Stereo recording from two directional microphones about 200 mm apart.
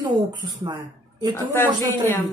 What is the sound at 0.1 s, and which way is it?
Speech, 20° right (ahead or behind).